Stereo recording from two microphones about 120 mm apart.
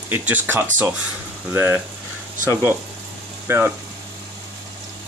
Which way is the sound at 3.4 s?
20° right (ahead or behind).